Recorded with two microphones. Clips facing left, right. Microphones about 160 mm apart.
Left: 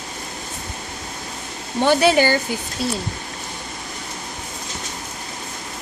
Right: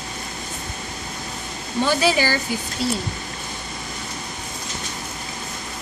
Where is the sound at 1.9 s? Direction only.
55° left (ahead or behind).